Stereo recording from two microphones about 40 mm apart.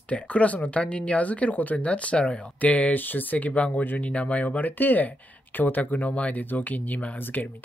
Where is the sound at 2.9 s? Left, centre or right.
Left.